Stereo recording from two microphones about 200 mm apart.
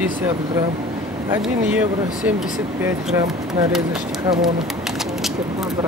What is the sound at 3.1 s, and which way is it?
Speech, 20° right (ahead or behind).